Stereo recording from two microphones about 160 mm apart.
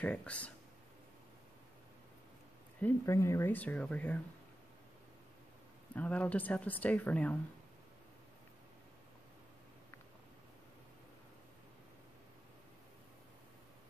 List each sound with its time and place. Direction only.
0.0 s speech: 10° left (ahead or behind)
2.8 s speech: 15° left (ahead or behind)
5.9 s speech: 10° left (ahead or behind)